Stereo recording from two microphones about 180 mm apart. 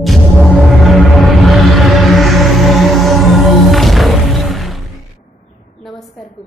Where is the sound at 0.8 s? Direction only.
Centre (ahead or behind).